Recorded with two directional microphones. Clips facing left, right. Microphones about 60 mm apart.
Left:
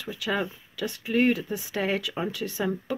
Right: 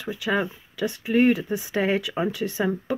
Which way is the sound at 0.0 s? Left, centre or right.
Right.